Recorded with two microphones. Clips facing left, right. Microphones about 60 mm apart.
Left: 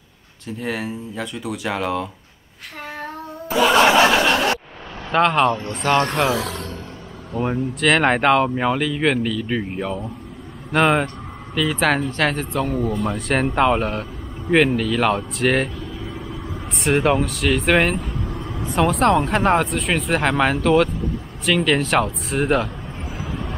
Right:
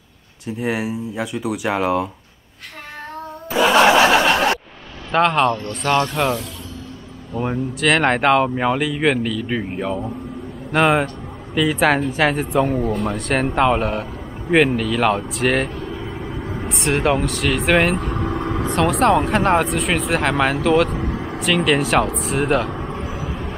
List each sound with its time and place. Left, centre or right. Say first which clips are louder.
0.6 s speech: right 4 dB; centre
3.5 s a sound: right 1 dB; centre
5.1 s speech: even; centre
5.8 s speech: even; centre
7.3 s speech: even; centre
13.0 s speech: right 1 dB; centre
18.1 s vehicle: right 7 dB; right
18.8 s speech: even; centre
22.8 s vehicle: right 6 dB; right